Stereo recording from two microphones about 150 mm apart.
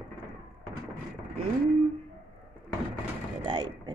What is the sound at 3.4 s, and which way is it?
Gunshot, 30° right (ahead or behind).